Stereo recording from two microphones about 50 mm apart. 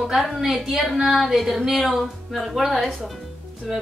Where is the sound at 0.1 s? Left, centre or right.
Centre.